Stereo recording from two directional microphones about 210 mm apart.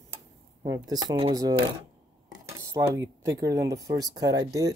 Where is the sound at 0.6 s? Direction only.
20° right (ahead or behind).